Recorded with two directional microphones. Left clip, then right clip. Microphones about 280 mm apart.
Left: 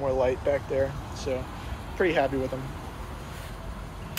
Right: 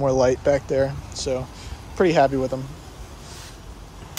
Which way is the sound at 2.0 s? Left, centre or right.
Right.